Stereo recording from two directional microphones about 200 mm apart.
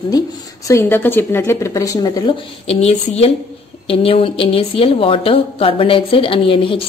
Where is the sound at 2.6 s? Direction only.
30° left (ahead or behind).